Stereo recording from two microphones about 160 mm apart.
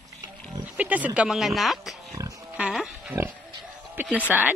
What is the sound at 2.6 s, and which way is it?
Pig, 5° right (ahead or behind).